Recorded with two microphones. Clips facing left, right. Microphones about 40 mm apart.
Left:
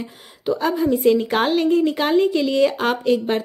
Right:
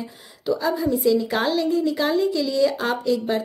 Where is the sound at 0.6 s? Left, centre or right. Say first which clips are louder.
Left 5 dB; left.